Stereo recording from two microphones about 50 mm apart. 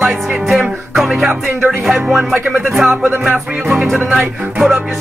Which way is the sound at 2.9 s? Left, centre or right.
Right.